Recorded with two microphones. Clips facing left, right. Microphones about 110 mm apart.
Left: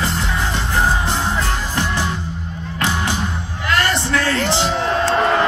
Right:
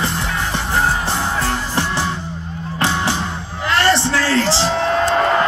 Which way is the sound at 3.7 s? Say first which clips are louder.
Right 3 dB; 30° right (ahead or behind).